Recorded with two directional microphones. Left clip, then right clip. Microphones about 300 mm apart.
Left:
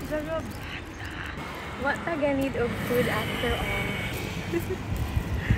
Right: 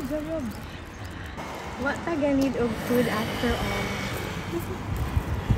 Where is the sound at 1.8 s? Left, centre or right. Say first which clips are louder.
Even; right.